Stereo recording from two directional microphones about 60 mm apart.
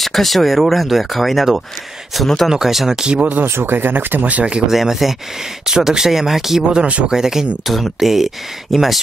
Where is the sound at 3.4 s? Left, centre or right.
Right; by 4.7 s centre.